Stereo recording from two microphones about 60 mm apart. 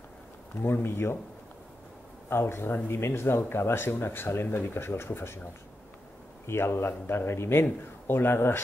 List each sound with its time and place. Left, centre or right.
0.6 s speech: left
2.2 s speech: left
6.4 s speech: left